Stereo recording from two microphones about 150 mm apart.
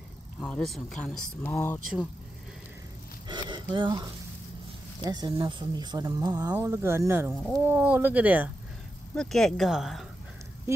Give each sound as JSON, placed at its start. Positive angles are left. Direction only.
{"t": 0.5, "sound": "speech", "side_deg": 0}
{"t": 1.4, "sound": "speech", "side_deg": 15}
{"t": 3.3, "sound": "a sound", "side_deg": -30}
{"t": 5.0, "sound": "speech", "side_deg": -25}
{"t": 9.1, "sound": "speech", "side_deg": 5}